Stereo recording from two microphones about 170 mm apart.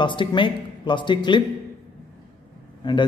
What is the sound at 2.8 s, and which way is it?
Speech, 25° left (ahead or behind).